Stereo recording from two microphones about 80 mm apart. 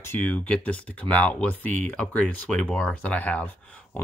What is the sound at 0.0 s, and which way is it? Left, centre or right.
Speech, left.